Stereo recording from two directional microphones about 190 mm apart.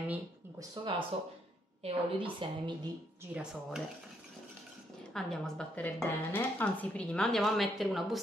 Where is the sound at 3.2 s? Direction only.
5° right (ahead or behind).